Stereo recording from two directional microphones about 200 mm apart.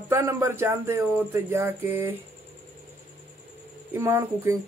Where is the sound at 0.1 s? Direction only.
15° right (ahead or behind).